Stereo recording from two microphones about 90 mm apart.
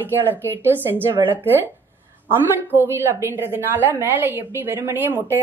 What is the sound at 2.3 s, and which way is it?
A woman's voice, 25° right (ahead or behind).